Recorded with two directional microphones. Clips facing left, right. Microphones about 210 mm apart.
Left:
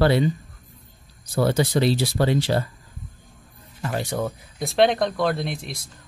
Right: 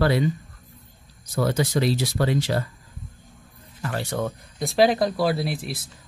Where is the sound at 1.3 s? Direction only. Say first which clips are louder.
Left 2 dB; 30° left (ahead or behind).